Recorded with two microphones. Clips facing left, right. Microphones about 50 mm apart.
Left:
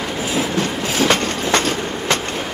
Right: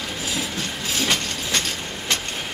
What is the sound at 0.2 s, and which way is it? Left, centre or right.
Train, left.